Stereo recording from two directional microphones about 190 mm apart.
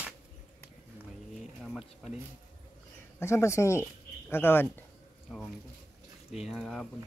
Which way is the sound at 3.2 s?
15° left (ahead or behind).